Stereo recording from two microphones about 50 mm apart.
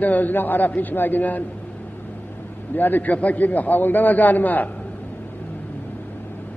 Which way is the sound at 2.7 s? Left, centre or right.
Left.